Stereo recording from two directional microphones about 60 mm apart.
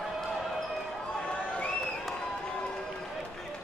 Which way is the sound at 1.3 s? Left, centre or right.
Centre.